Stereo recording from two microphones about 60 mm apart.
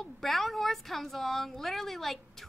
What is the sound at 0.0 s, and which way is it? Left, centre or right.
Speech, centre.